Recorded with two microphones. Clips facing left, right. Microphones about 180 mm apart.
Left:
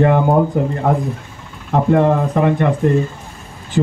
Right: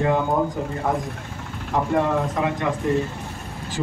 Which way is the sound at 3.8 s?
55° left (ahead or behind).